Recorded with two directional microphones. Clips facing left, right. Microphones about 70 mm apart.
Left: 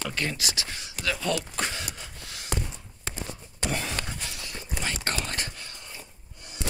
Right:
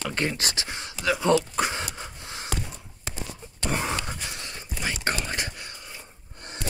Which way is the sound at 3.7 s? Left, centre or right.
Right.